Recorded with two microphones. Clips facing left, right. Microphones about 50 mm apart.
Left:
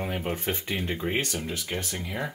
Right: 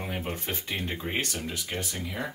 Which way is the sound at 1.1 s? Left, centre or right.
Left.